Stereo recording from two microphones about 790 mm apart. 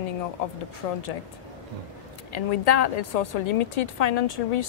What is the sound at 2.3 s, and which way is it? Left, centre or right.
Speech, left.